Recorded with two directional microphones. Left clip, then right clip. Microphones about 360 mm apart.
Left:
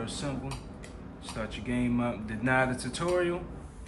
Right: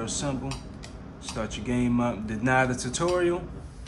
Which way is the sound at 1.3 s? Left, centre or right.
Centre.